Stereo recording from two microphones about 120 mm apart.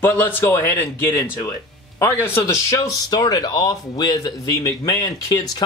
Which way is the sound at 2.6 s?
25° left (ahead or behind).